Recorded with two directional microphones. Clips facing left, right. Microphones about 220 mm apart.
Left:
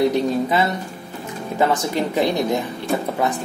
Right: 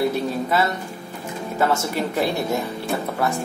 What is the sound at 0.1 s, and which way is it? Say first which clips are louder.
Speech: left 3 dB; 15° left (ahead or behind).